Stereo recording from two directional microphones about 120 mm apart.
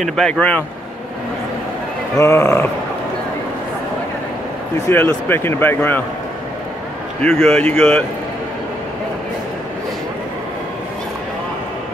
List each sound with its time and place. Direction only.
0.0 s speech: 5° left (ahead or behind)
2.1 s speech: 20° left (ahead or behind)
4.8 s speech: 15° left (ahead or behind)
7.2 s speech: 5° left (ahead or behind)